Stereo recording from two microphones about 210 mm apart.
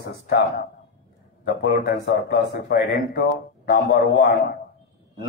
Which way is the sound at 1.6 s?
50° left (ahead or behind).